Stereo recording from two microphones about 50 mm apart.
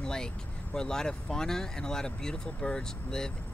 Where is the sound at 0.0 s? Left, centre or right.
Centre.